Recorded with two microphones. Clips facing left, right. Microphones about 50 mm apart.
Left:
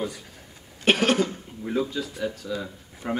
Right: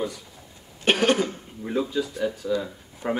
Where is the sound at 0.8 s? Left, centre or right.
Centre.